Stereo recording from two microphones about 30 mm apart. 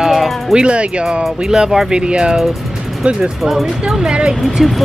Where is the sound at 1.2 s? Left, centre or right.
Right.